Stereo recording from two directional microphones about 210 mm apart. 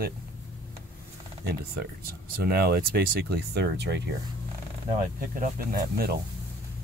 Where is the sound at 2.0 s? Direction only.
50° right (ahead or behind).